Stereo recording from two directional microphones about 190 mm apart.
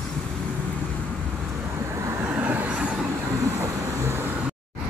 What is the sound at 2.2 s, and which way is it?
Vehicle, 10° right (ahead or behind).